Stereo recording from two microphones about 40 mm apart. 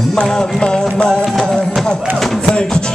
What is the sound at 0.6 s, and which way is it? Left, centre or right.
Speech, centre.